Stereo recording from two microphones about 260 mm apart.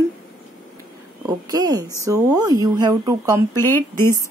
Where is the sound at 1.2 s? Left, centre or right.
Centre.